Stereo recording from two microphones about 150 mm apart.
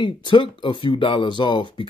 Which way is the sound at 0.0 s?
30° left (ahead or behind).